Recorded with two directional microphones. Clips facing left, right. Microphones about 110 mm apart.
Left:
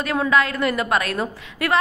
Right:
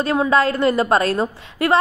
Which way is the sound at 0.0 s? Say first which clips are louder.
Right 3 dB; 30° right (ahead or behind).